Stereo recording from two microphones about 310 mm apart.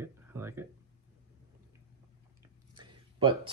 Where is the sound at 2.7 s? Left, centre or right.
Centre.